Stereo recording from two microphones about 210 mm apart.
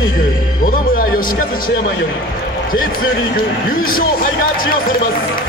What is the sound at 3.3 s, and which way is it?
Speech, 45° left (ahead or behind).